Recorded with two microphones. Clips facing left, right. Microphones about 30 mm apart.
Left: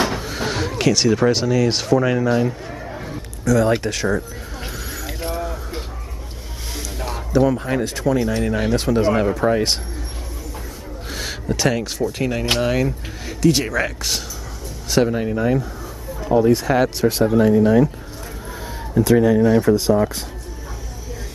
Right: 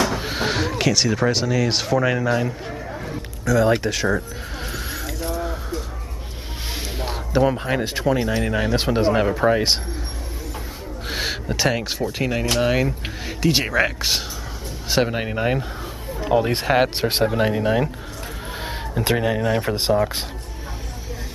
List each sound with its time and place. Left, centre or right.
0.2 s a sound: right
0.6 s speech: centre
2.7 s a sound: centre
3.4 s speech: centre
4.6 s vehicle: centre
6.7 s speech: right
11.1 s a sound: right
12.1 s speech: centre
15.1 s speech: right
16.6 s speech: right
18.7 s a sound: right
19.1 s speech: right